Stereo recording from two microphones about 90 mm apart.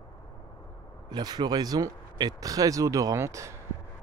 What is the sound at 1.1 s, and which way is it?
Speech, 50° right (ahead or behind).